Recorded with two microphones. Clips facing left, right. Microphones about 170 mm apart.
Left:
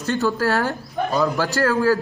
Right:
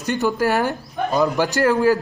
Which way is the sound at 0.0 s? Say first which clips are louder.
Right 1 dB; 15° right (ahead or behind).